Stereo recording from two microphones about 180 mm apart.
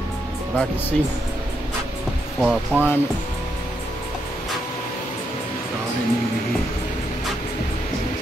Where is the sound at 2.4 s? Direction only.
5° right (ahead or behind).